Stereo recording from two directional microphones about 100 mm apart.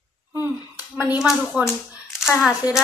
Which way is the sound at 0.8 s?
40° left (ahead or behind).